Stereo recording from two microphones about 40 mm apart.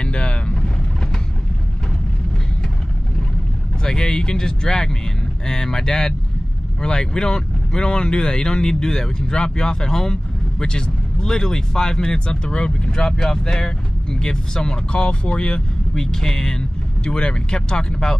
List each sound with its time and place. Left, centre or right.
0.0 s boat: left
3.8 s speech: centre